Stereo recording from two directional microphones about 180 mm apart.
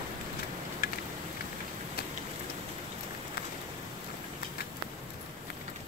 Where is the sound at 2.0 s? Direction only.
55° left (ahead or behind).